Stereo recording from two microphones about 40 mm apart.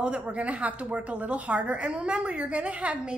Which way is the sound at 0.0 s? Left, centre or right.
Right.